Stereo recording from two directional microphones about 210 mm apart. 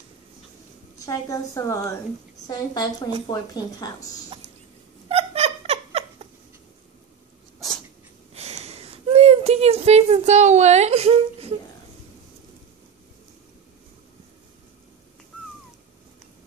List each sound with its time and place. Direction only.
0.9 s a woman's voice: 15° left (ahead or behind)
5.0 s cat: 30° right (ahead or behind)
8.4 s a sound: 30° right (ahead or behind)